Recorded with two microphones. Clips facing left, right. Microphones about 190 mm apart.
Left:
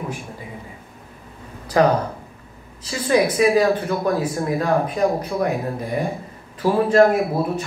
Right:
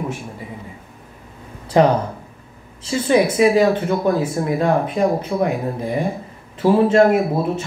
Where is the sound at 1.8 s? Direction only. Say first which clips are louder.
Right 2 dB; 25° right (ahead or behind).